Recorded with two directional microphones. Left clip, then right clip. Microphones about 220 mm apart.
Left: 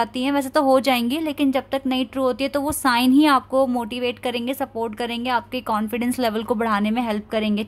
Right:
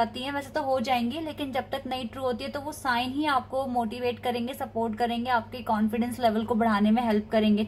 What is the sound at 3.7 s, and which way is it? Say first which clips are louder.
A woman's voice: left 4 dB; 75° left (ahead or behind).